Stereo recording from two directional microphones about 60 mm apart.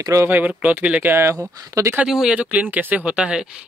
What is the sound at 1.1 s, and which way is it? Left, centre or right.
Speech, right.